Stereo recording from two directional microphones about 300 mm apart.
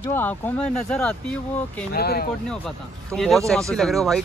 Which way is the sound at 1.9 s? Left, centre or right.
Left.